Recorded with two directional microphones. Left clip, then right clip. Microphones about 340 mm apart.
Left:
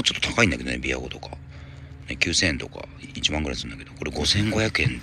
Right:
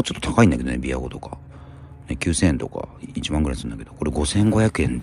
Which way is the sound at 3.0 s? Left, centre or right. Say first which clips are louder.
Left 5 dB; centre.